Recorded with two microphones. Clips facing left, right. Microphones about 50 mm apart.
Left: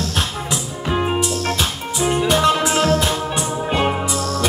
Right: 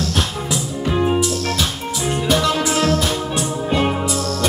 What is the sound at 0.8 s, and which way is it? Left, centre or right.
Music, centre.